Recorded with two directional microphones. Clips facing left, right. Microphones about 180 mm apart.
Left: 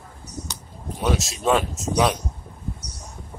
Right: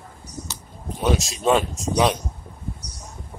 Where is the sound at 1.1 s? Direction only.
Centre (ahead or behind).